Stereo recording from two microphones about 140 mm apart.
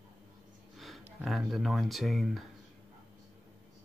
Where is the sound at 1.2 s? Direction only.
Centre (ahead or behind).